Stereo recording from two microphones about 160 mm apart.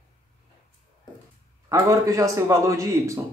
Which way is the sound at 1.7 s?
20° right (ahead or behind).